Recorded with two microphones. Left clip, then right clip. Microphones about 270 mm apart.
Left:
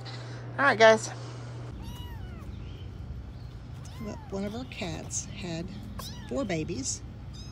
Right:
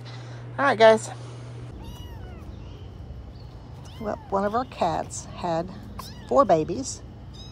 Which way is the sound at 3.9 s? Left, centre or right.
Centre.